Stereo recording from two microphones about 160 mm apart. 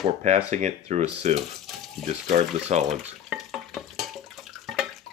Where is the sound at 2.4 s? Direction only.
40° right (ahead or behind).